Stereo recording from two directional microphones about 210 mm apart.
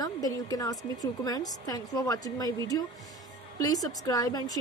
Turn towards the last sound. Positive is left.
turn(degrees=20)  # may be behind; listen again after turning